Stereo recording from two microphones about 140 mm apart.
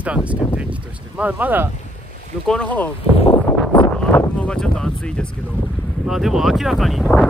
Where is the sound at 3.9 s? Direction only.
10° left (ahead or behind).